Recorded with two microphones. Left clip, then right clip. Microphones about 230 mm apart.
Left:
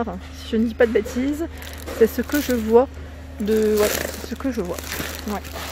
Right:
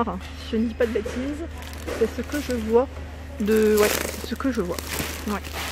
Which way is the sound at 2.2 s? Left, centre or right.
Left.